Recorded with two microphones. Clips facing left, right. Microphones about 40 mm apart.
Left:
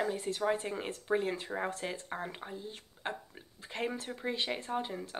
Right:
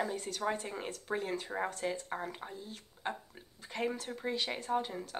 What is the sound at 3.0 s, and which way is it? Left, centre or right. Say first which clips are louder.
Speech: even; left.